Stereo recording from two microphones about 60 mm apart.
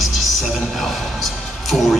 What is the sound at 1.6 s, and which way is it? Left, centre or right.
Speech, centre.